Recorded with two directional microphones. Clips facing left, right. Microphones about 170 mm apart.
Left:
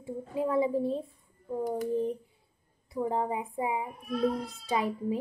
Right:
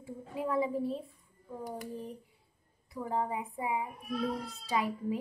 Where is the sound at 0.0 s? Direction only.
25° left (ahead or behind).